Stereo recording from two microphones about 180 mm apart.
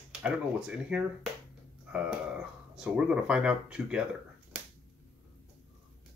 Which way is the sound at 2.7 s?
5° right (ahead or behind).